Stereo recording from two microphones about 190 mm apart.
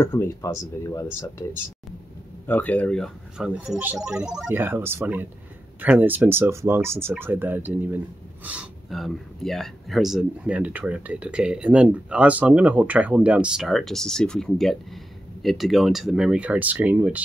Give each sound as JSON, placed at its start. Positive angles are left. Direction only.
{"t": 0.0, "sound": "speech", "side_deg": 15}
{"t": 2.4, "sound": "speech", "side_deg": 10}